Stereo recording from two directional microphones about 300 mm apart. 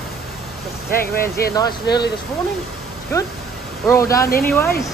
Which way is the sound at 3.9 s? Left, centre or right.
Centre.